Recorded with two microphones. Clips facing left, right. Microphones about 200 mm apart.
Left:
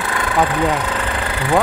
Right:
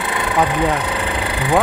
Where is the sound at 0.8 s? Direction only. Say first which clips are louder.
Even; 15° right (ahead or behind).